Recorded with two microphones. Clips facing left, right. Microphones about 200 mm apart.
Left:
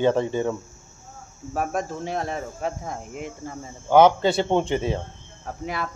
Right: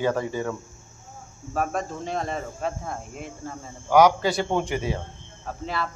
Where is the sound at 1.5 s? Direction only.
10° left (ahead or behind).